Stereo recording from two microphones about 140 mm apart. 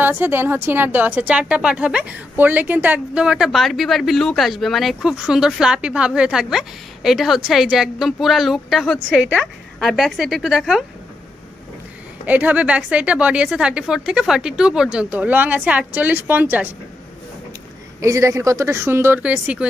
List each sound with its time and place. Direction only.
0.0 s a woman's voice: 15° right (ahead or behind)
12.3 s speech: 10° right (ahead or behind)
18.0 s speech: 20° right (ahead or behind)